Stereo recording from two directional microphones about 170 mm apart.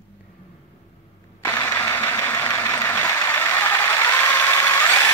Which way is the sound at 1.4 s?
15° left (ahead or behind).